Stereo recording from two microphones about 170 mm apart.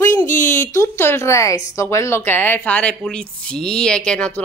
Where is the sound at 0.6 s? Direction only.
15° left (ahead or behind).